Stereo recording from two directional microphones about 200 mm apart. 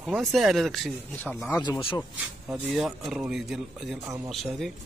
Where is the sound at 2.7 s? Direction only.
Centre (ahead or behind).